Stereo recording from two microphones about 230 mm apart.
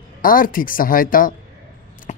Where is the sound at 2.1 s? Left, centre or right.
Left.